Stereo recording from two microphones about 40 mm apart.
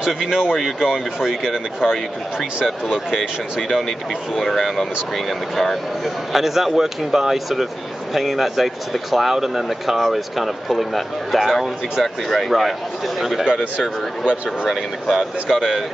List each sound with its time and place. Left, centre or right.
0.0 s speech: centre
4.4 s speech: centre
13.7 s speech: right
14.7 s speech: centre
15.4 s speech: centre